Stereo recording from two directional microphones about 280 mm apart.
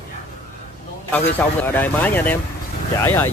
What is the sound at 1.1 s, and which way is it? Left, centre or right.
Speech, centre.